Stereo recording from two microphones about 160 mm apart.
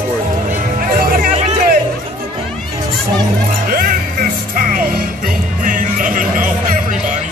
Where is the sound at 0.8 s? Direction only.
60° right (ahead or behind).